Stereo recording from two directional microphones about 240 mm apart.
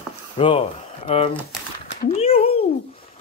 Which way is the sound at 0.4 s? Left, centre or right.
Left.